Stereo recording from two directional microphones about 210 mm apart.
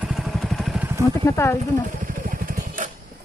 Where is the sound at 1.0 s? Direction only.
15° left (ahead or behind).